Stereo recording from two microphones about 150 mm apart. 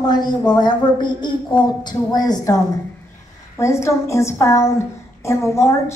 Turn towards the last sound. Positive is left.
turn(degrees=20)  # may be behind; listen again after turning